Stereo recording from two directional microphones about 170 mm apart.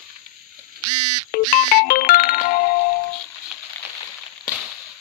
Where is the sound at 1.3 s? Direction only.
55° left (ahead or behind).